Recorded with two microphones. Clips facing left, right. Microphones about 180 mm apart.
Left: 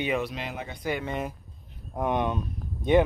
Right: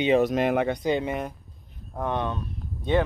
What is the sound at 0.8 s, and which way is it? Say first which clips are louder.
Speech: right 6 dB; 20° right (ahead or behind).